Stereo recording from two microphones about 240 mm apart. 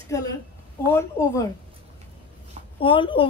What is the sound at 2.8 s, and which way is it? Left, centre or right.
Speech, left.